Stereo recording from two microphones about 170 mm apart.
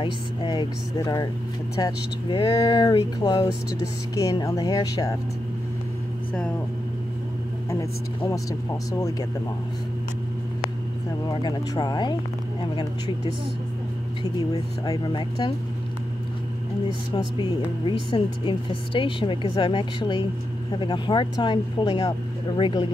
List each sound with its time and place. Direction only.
0.0 s speech: 25° left (ahead or behind)
7.8 s speech: 20° left (ahead or behind)
11.4 s speech: 25° left (ahead or behind)
14.2 s speech: 20° left (ahead or behind)
17.8 s speech: 30° left (ahead or behind)